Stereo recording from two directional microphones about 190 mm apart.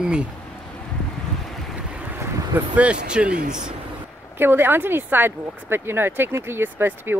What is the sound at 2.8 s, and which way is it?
Speech, 5° right (ahead or behind).